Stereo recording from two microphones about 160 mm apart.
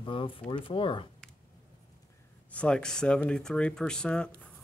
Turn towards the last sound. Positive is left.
turn(degrees=5)  # may be behind; listen again after turning